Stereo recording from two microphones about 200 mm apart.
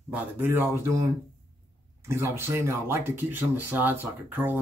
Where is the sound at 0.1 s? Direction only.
10° right (ahead or behind).